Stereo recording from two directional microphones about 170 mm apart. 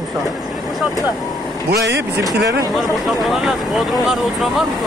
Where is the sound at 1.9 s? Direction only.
75° right (ahead or behind).